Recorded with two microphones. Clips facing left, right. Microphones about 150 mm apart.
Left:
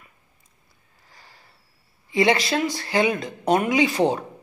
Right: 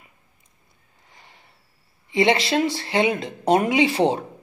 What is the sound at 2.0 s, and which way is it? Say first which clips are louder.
A man's voice: right 1 dB; 25° right (ahead or behind).